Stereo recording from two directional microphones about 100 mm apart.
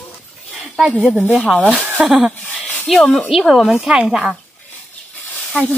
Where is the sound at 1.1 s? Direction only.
10° right (ahead or behind).